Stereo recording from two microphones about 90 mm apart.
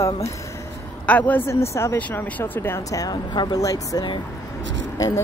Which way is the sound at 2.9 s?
45° left (ahead or behind).